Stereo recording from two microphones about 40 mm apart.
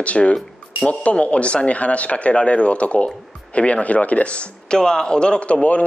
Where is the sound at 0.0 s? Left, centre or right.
Left.